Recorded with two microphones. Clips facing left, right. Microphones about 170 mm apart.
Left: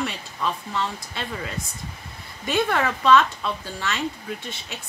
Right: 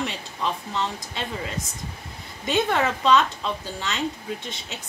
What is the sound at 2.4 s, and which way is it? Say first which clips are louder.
Speech: even; 20° right (ahead or behind).